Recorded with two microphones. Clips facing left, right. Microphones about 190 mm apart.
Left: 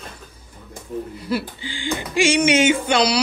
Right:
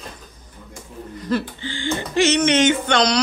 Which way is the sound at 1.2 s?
10° left (ahead or behind).